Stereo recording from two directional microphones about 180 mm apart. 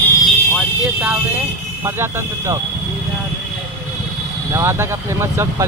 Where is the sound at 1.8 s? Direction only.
15° right (ahead or behind).